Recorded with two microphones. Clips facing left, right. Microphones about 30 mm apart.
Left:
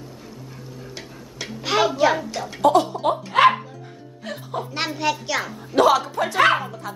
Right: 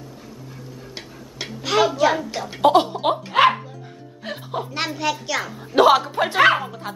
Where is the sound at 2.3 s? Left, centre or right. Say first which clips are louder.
Right 1 dB; centre.